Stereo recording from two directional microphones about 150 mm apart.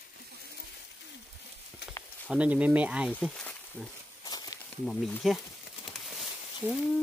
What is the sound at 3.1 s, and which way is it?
Speech, 10° left (ahead or behind).